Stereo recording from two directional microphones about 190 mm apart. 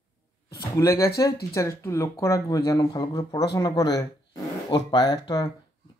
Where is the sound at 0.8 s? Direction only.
15° left (ahead or behind).